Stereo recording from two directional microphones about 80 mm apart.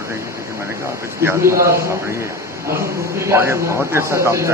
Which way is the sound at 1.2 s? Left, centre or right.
Right.